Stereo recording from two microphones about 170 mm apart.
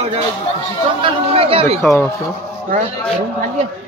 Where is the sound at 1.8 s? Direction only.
15° left (ahead or behind).